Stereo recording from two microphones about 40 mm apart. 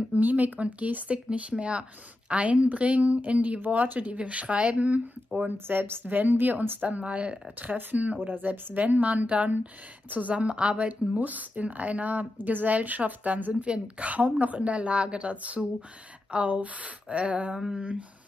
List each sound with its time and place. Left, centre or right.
0.1 s a woman's voice: right
5.7 s a woman's voice: right
6.0 s a woman's voice: right
6.9 s a woman's voice: right
7.7 s a woman's voice: right